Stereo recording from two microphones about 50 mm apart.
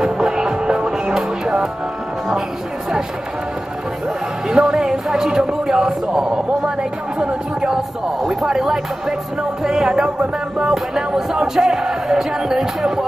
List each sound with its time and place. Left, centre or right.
0.0 s music: centre
4.5 s a sound: centre
6.6 s speech: centre
9.6 s music: centre